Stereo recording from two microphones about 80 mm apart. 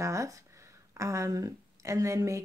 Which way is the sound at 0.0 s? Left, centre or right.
Right.